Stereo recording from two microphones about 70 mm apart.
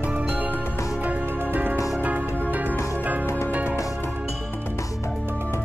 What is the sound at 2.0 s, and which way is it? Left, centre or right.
Music, right.